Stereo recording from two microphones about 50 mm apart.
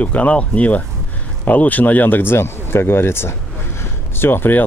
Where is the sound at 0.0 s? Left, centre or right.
Left.